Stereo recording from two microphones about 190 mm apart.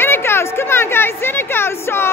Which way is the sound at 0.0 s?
10° left (ahead or behind).